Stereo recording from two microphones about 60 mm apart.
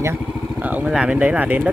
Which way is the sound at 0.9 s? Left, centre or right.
Centre.